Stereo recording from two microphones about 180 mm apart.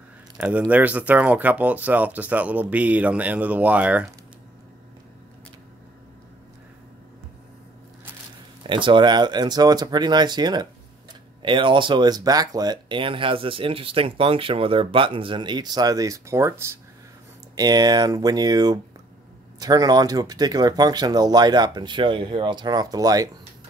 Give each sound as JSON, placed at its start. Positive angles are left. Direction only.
{"t": 0.7, "sound": "speech", "side_deg": -10}
{"t": 8.6, "sound": "speech", "side_deg": -30}